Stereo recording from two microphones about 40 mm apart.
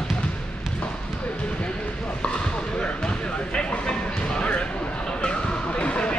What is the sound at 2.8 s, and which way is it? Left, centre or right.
Basketball bounce, left.